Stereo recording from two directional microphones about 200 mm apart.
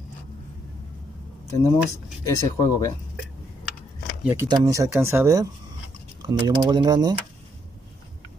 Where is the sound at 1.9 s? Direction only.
15° left (ahead or behind).